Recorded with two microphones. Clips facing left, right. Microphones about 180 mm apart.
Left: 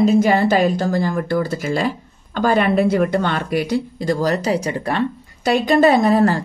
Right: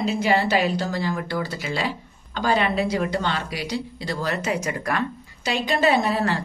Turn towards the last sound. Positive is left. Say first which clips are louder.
# left 7 dB
turn(degrees=45)  # may be behind; listen again after turning